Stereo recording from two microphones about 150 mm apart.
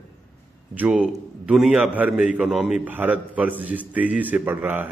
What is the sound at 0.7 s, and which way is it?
A man's voice, 5° right (ahead or behind).